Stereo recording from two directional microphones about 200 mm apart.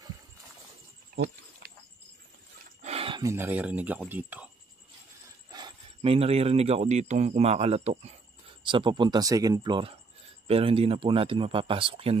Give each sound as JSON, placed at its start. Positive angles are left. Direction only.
{"t": 2.8, "sound": "speech", "side_deg": -30}
{"t": 5.5, "sound": "speech", "side_deg": -20}